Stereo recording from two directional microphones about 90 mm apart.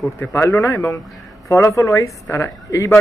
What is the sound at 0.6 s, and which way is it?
Speech, 40° left (ahead or behind).